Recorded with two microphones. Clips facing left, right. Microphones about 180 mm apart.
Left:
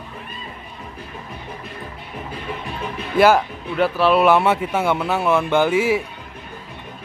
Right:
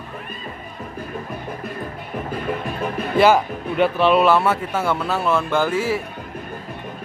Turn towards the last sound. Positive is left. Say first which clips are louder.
# left 3 dB
turn(degrees=15)  # may be behind; listen again after turning